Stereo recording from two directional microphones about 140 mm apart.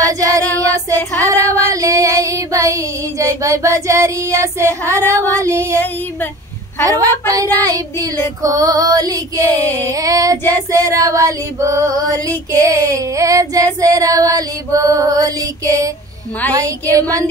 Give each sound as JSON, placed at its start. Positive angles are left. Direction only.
{"t": 0.0, "sound": "child singing", "side_deg": -25}
{"t": 1.2, "sound": "female singing", "side_deg": -20}
{"t": 5.0, "sound": "female singing", "side_deg": 10}
{"t": 5.4, "sound": "child singing", "side_deg": -20}
{"t": 6.8, "sound": "child singing", "side_deg": -25}